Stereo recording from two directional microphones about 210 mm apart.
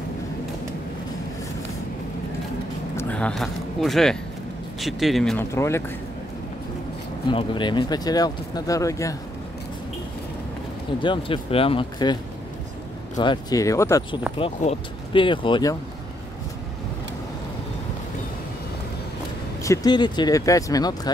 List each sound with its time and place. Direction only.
3.0 s speech: 5° left (ahead or behind)
5.5 s speech: 15° left (ahead or behind)
7.2 s speech: 20° left (ahead or behind)
11.0 s speech: 25° left (ahead or behind)
13.2 s speech: 20° left (ahead or behind)
14.4 s speech: 30° left (ahead or behind)
19.6 s speech: 15° left (ahead or behind)